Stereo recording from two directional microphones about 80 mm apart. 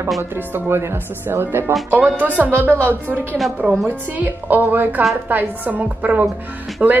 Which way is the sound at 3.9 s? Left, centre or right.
Right.